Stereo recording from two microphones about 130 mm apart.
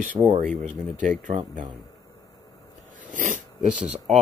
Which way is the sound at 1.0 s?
80° right.